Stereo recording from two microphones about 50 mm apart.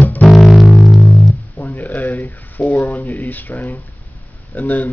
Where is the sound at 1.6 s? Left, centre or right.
Left.